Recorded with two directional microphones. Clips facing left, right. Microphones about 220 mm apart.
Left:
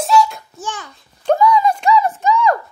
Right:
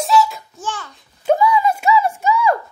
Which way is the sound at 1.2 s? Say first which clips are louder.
Left 1 dB; 10° right (ahead or behind).